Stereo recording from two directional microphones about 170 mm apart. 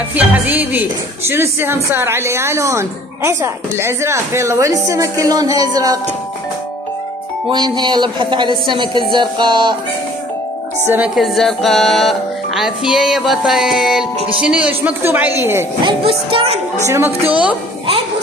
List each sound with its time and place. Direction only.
0.1 s a woman's voice: 10° right (ahead or behind)
7.4 s speech: 25° right (ahead or behind)
10.9 s a woman's voice: 5° right (ahead or behind)
15.8 s music: 30° right (ahead or behind)
16.8 s a woman's voice: 15° right (ahead or behind)